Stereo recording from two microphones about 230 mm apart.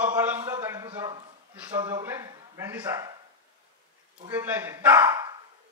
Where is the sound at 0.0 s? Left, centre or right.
Centre.